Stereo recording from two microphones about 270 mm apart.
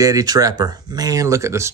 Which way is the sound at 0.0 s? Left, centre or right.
Centre.